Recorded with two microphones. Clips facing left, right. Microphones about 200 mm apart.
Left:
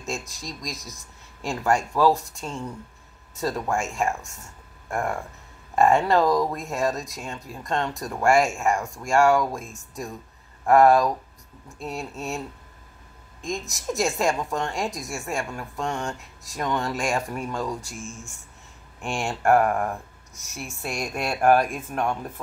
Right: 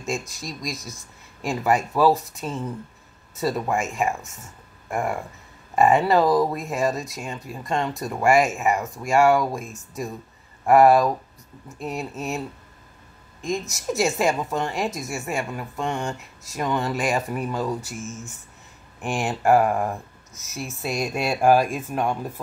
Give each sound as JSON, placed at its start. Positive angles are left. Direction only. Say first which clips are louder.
{"t": 0.0, "sound": "speech", "louder": "right 3 dB", "side_deg": 0}
{"t": 17.9, "sound": "speech", "louder": "right 3 dB", "side_deg": -20}
{"t": 18.9, "sound": "speech", "louder": "right 3 dB", "side_deg": -5}